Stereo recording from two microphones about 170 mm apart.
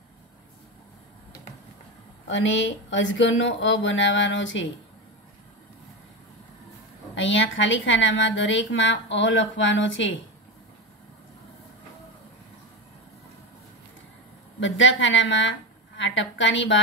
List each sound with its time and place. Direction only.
2.2 s a woman's voice: 90° left
7.2 s a woman's voice: 90° left
14.6 s a woman's voice: 90° left